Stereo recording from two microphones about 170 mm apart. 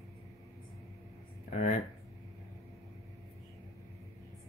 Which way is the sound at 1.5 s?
45° left (ahead or behind).